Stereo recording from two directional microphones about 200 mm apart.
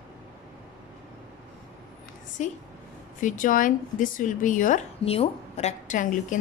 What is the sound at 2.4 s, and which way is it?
Speech, 35° left (ahead or behind).